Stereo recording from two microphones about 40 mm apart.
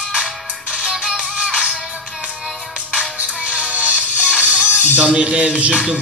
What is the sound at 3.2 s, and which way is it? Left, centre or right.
Music, right.